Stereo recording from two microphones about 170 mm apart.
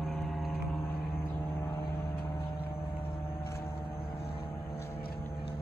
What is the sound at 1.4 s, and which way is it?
Vehicle, 15° left (ahead or behind).